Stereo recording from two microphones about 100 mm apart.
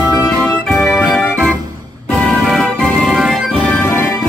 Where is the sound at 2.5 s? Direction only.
Centre (ahead or behind).